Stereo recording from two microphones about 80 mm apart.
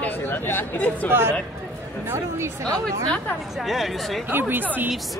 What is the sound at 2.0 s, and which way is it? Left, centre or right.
Speech, right.